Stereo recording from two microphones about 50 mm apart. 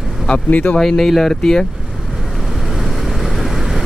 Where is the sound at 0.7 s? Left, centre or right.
Centre.